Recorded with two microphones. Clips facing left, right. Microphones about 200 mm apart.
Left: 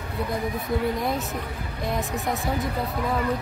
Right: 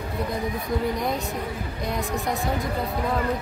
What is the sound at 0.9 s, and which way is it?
A woman's voice, centre (ahead or behind).